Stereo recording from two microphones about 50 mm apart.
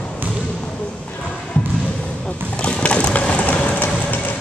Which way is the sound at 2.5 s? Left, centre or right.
Left.